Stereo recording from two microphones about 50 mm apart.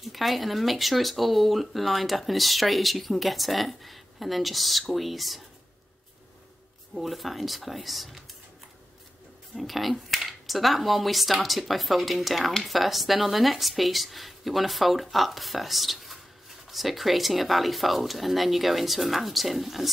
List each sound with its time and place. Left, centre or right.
0.0 s speech: centre
6.9 s speech: centre
9.6 s speech: centre